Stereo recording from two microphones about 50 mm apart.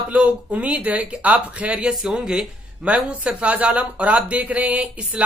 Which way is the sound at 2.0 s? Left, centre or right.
Centre.